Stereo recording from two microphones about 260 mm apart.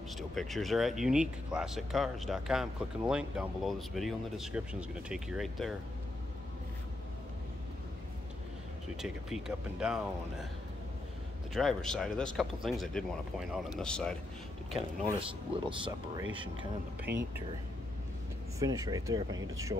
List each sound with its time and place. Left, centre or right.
0.3 s speech: centre
8.9 s speech: centre
11.5 s speech: centre
15.0 s speech: centre
17.1 s speech: centre
18.6 s speech: centre